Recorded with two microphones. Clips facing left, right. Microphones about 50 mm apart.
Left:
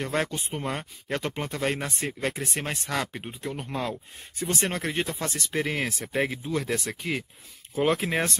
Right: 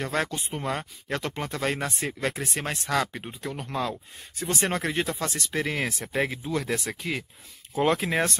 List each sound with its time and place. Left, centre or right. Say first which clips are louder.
0.0 s speech: even; centre
4.6 s speech: right 3 dB; centre